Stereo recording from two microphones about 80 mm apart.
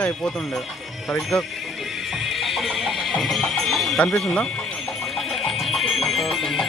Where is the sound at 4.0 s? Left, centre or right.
Centre.